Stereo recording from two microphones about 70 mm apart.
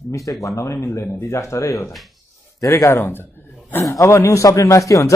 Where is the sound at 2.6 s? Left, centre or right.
Left.